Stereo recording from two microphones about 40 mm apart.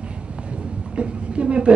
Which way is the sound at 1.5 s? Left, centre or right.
Right.